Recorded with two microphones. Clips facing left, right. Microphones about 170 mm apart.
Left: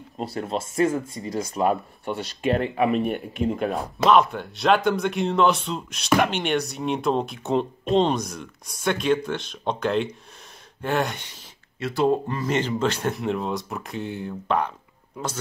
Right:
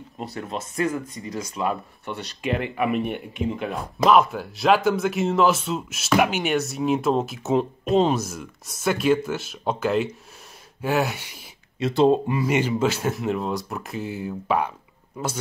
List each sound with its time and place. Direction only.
0.2 s speech: 30° left (ahead or behind)
3.8 s speech: centre (ahead or behind)
11.9 s speech: 25° right (ahead or behind)
12.3 s speech: 10° right (ahead or behind)